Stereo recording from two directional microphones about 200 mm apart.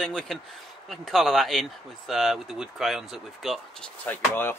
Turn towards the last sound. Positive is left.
turn(degrees=10)  # may be behind; listen again after turning